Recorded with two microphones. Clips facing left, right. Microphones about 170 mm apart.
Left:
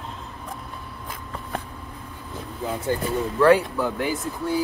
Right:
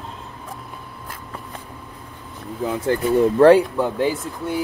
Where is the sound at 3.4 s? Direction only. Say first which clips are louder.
Right 3 dB; 25° right (ahead or behind).